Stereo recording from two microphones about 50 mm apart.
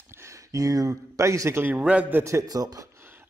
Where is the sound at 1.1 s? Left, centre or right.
Right.